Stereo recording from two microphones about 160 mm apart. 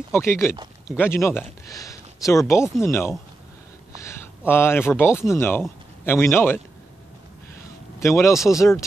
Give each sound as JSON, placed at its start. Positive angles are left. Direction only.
{"t": 0.1, "sound": "speech", "side_deg": 15}
{"t": 8.0, "sound": "speech", "side_deg": 20}